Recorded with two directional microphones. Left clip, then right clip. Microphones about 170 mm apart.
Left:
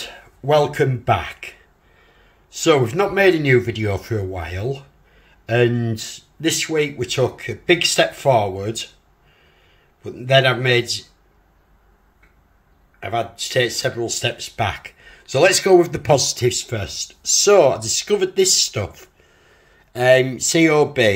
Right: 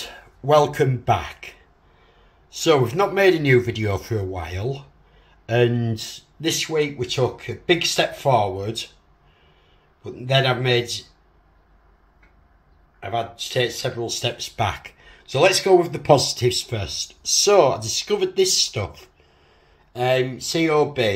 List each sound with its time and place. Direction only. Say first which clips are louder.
0.0 s speech: left 2 dB; 15° left (ahead or behind)
10.1 s speech: left 5 dB; 25° left (ahead or behind)
13.0 s speech: left 3 dB; 40° left (ahead or behind)
14.1 s speech: left 2 dB; 15° left (ahead or behind)
15.0 s a sound: left 3 dB; 20° left (ahead or behind)
15.5 s speech: left 3 dB; 35° left (ahead or behind); by 19.0 s 20° left (ahead or behind)
19.5 s speech: left 4 dB; 35° left (ahead or behind)